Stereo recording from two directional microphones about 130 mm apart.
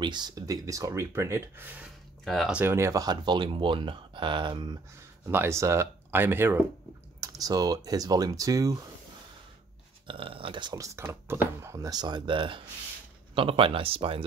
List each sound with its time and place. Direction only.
0.0 s speech: 35° right (ahead or behind); by 1.9 s 15° right (ahead or behind)
2.2 s speech: centre (ahead or behind)
2.5 s speech: 20° right (ahead or behind); by 4.7 s 35° right (ahead or behind)
5.2 s speech: 20° right (ahead or behind)
7.2 s speech: 30° right (ahead or behind)
10.0 s speech: 45° right (ahead or behind)
11.0 s speech: 20° right (ahead or behind); by 14.2 s 45° right (ahead or behind)